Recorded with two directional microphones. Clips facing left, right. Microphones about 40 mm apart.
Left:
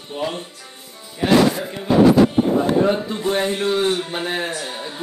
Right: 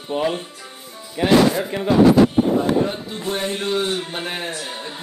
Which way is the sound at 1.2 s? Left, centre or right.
Right.